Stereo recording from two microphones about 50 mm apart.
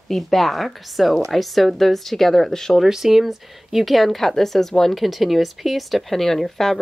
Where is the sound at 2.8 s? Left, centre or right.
Centre.